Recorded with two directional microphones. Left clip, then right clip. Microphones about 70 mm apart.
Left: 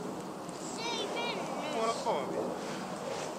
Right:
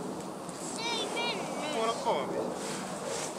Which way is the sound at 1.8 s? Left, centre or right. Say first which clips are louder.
Right 2 dB; centre.